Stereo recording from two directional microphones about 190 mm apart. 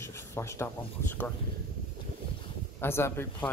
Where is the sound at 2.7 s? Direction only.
10° left (ahead or behind).